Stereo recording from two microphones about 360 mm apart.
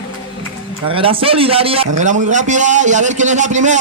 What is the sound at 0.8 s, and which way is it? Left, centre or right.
A man's voice, centre.